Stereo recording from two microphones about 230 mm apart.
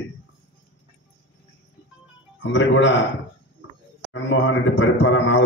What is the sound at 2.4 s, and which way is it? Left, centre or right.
Speech, left.